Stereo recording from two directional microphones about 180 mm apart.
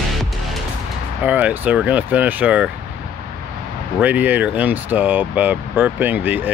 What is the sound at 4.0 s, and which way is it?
Speech, 10° right (ahead or behind).